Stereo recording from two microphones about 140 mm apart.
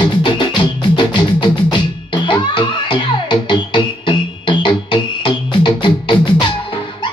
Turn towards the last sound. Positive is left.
turn(degrees=35)  # may be behind; listen again after turning